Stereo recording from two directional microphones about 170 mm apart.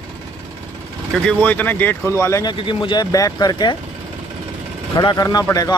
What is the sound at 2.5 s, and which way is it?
Speech, 30° left (ahead or behind).